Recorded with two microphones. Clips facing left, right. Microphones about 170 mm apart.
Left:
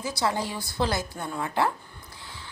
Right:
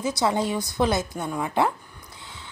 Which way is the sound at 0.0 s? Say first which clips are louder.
Right 4 dB; 20° right (ahead or behind).